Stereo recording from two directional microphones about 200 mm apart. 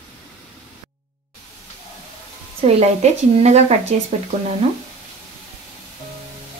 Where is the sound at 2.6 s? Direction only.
30° right (ahead or behind).